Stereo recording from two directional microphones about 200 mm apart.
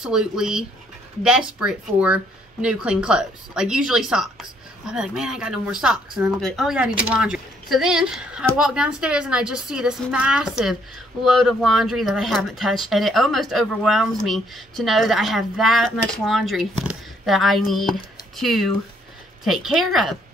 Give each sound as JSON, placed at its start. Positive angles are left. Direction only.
{"t": 0.0, "sound": "speech", "side_deg": -5}